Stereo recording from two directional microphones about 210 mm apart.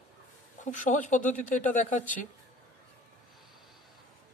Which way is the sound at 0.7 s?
35° left (ahead or behind).